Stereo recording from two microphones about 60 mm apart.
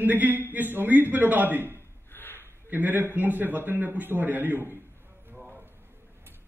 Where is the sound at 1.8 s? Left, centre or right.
Left.